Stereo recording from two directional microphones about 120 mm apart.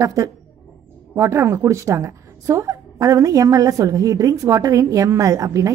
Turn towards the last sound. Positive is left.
turn(degrees=-25)  # may be behind; listen again after turning